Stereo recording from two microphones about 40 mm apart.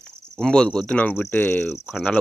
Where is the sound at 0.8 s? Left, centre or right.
Left.